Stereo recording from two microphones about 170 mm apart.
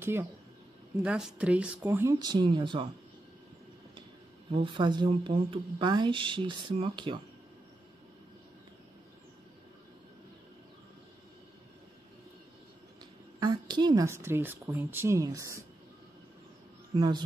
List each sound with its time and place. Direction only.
0.0 s speech: 15° right (ahead or behind)
2.1 s speech: 25° right (ahead or behind)
4.5 s speech: 30° right (ahead or behind)
13.4 s speech: 25° right (ahead or behind)
16.9 s speech: 25° right (ahead or behind)